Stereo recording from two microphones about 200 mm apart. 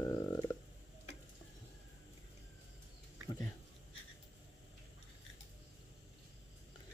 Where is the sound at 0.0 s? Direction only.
20° left (ahead or behind).